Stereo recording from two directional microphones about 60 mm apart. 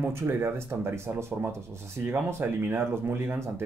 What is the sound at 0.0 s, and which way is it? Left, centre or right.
Speech, right.